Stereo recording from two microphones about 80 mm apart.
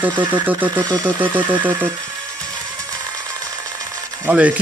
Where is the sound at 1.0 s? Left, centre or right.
Right.